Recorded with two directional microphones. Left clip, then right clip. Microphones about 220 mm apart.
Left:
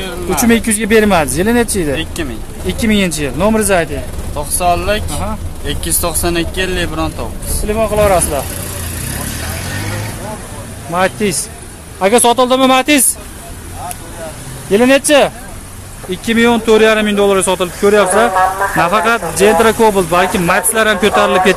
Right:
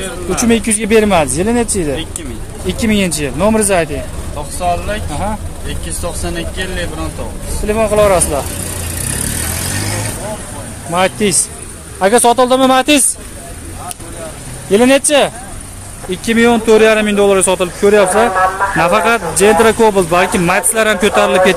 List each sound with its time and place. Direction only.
0.4 s speech: 10° left (ahead or behind)
4.6 s speech: 45° left (ahead or behind)
6.0 s speech: 50° left (ahead or behind)
7.6 s speech: 15° right (ahead or behind)
10.9 s speech: 5° right (ahead or behind)
12.0 s speech: 5° left (ahead or behind)
14.7 s speech: 5° right (ahead or behind)